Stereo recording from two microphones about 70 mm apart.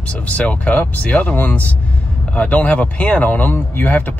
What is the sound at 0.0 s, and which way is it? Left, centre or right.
Speech, centre.